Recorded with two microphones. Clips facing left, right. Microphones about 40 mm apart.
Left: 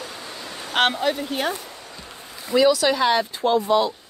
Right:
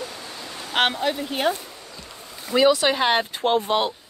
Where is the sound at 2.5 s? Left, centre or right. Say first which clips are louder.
Left 1 dB; right.